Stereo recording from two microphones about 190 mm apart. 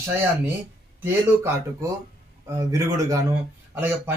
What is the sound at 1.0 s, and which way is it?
A man's voice, 15° right (ahead or behind).